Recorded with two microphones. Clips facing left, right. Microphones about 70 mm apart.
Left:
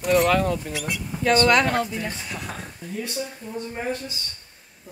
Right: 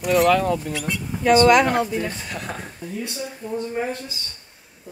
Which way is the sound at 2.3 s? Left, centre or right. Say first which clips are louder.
Right 3 dB; right.